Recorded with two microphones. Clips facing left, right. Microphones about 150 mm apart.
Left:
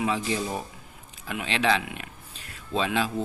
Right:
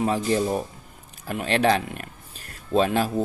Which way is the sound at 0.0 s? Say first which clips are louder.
Right 5 dB; 45° right (ahead or behind).